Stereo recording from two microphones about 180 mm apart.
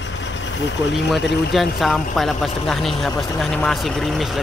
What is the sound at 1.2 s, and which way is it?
Speech, 70° left (ahead or behind).